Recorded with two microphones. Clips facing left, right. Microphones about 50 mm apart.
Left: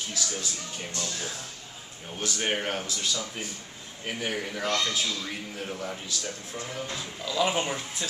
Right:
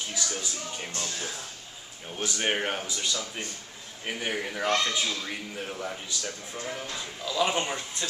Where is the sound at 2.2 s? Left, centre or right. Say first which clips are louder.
Right 1 dB; centre.